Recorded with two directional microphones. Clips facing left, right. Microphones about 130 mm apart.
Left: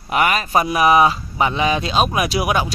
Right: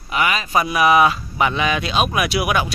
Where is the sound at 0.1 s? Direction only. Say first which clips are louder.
Left 2 dB; 45° left (ahead or behind).